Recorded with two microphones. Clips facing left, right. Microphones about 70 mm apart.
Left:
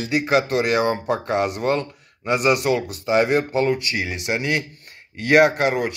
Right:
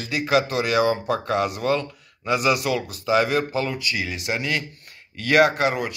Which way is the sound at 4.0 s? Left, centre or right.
Left.